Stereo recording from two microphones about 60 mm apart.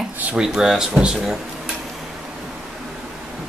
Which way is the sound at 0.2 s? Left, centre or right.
Centre.